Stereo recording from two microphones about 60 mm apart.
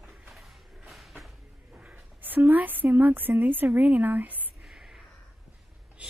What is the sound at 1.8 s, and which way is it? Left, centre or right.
Speech, right.